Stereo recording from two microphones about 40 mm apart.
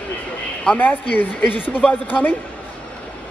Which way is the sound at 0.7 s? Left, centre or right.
Left.